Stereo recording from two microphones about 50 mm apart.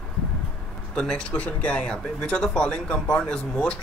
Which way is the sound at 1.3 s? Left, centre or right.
Left.